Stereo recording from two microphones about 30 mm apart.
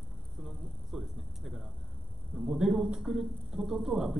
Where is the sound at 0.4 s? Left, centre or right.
Centre.